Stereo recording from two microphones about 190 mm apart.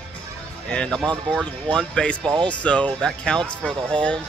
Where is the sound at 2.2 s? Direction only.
25° right (ahead or behind).